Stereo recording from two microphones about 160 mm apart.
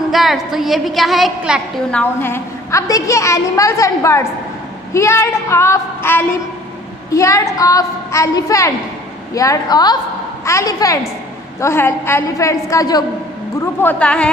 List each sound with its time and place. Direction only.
0.1 s a woman's voice: centre (ahead or behind)
1.9 s a woman's voice: 10° left (ahead or behind)
4.9 s child singing: 15° left (ahead or behind)
7.1 s a woman's voice: 20° left (ahead or behind)
13.7 s child singing: 10° left (ahead or behind)